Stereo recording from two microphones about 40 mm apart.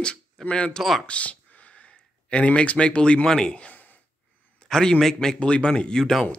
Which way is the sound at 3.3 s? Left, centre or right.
Centre.